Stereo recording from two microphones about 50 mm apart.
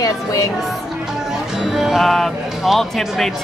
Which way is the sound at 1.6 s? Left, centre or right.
Centre.